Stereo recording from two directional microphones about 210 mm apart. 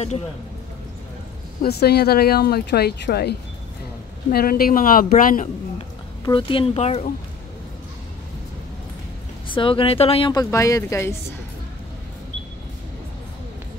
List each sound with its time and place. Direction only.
1.6 s speech: 50° left (ahead or behind)
6.2 s a woman's voice: 25° left (ahead or behind)
9.5 s a woman's voice: 25° left (ahead or behind)